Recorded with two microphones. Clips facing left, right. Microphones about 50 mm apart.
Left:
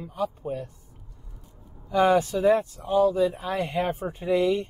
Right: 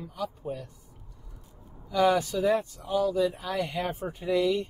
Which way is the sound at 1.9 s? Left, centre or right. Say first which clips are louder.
Left 3 dB; left.